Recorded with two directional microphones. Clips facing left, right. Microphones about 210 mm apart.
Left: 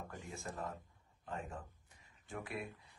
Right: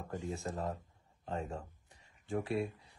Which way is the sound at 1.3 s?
40° right (ahead or behind).